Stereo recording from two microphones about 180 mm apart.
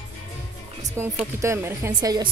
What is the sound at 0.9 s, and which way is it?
Speech, 15° right (ahead or behind).